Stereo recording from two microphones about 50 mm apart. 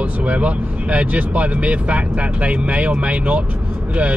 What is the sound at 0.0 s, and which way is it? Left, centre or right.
Speech, right.